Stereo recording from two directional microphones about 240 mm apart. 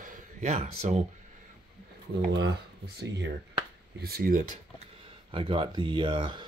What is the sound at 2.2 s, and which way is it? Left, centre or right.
Speech, right.